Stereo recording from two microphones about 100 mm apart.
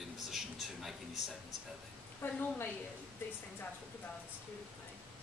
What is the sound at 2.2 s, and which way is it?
Speech, 20° left (ahead or behind).